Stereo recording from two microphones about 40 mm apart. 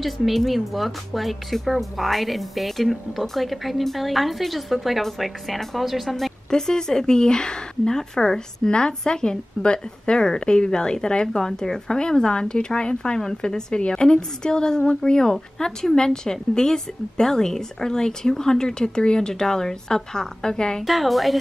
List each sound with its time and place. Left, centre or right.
0.0 s speech: centre
6.5 s speech: centre
20.8 s speech: centre